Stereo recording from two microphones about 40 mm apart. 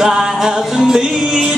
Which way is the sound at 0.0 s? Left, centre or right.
Centre.